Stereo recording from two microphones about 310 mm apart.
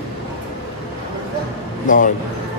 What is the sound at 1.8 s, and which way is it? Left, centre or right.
Speech, left.